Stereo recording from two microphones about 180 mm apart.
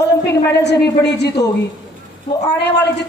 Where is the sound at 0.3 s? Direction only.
70° left (ahead or behind).